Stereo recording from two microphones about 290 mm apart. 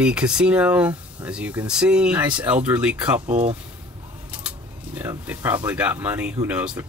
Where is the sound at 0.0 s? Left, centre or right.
Centre.